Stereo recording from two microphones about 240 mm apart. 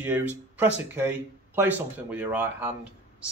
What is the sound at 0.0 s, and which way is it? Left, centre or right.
Speech, centre.